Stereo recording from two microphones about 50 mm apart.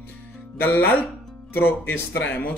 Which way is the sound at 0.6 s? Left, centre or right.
Left.